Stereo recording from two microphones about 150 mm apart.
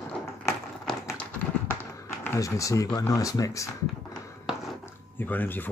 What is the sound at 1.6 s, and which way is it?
Chop, 15° left (ahead or behind).